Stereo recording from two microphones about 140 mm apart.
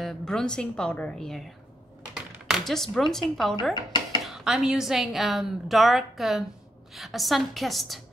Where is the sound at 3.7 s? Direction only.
30° left (ahead or behind).